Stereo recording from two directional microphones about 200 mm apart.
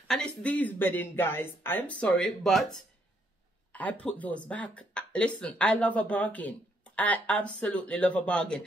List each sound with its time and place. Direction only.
0.1 s speech: 5° left (ahead or behind)
4.0 s speech: 5° left (ahead or behind)